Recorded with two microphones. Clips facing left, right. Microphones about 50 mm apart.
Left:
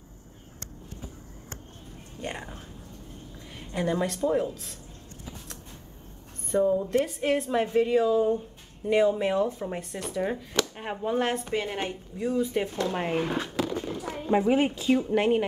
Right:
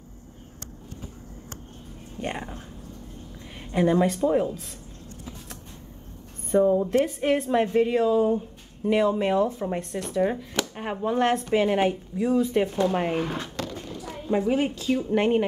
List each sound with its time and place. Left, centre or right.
2.2 s speech: centre
3.5 s speech: centre
6.5 s speech: centre
11.5 s speech: centre
11.9 s speech: centre
13.7 s chop: left
15.0 s speech: centre